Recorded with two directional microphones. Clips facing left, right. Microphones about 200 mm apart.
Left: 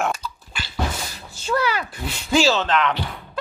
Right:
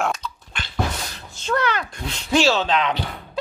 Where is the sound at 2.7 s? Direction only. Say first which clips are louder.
Left 1 dB; 15° right (ahead or behind).